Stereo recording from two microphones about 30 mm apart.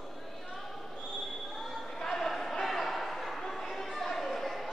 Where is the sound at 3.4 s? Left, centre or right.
Centre.